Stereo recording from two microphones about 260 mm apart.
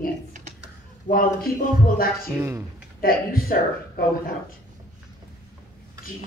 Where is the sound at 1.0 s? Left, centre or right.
Left.